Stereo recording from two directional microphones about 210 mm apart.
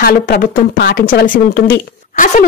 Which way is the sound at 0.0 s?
40° left (ahead or behind).